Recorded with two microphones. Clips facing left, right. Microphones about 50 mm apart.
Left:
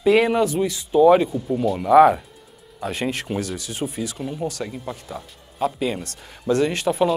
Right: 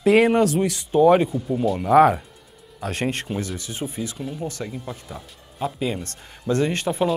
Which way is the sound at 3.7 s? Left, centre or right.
Left.